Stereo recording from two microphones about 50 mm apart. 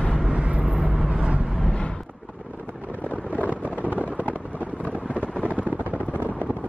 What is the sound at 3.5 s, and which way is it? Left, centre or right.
Wind noise, right.